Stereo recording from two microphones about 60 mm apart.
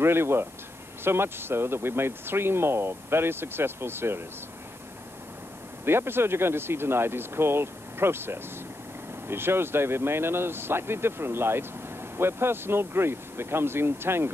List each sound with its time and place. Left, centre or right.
0.0 s speech: right
5.9 s speech: right